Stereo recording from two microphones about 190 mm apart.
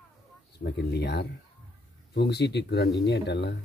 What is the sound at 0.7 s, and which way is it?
Speech, 60° left (ahead or behind).